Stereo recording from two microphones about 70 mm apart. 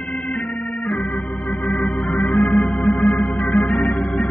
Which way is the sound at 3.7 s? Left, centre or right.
Centre.